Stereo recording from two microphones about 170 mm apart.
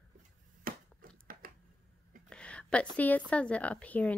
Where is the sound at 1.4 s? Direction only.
55° right (ahead or behind).